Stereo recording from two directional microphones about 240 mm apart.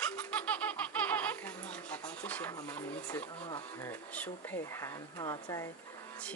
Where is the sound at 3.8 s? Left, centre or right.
Centre.